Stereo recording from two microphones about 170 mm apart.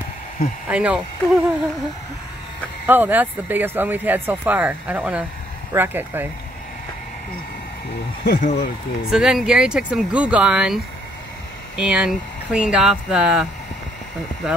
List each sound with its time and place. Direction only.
0.7 s speech: 5° right (ahead or behind)
2.9 s speech: 10° right (ahead or behind)
8.2 s speech: 55° left (ahead or behind)
9.1 s speech: 5° right (ahead or behind)